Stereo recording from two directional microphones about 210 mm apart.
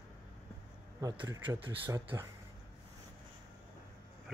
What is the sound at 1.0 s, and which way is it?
Speech, 15° right (ahead or behind).